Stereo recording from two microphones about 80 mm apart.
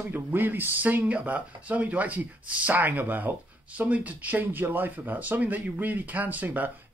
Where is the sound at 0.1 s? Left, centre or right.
Right.